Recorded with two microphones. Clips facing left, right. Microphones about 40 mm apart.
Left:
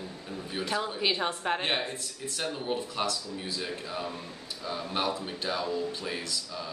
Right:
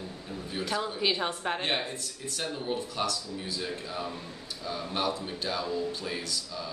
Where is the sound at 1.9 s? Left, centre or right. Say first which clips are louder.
Even; left.